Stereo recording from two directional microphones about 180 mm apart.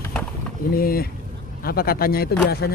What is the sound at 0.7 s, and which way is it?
Speech, 55° left (ahead or behind).